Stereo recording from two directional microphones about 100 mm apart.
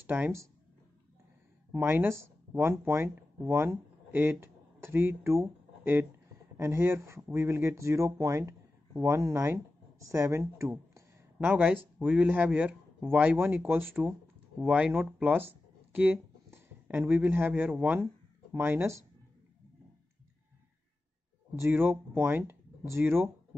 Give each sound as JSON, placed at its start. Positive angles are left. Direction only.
{"t": 0.0, "sound": "speech", "side_deg": -15}
{"t": 1.7, "sound": "speech", "side_deg": -25}
{"t": 11.3, "sound": "speech", "side_deg": -15}
{"t": 14.7, "sound": "speech", "side_deg": -10}
{"t": 21.5, "sound": "speech", "side_deg": -20}